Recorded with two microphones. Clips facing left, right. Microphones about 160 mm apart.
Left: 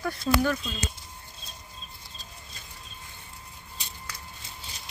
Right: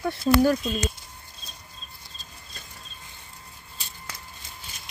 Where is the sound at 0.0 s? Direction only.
25° right (ahead or behind).